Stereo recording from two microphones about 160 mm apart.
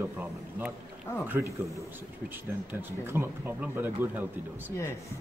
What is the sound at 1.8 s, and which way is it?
A man's voice, 15° right (ahead or behind).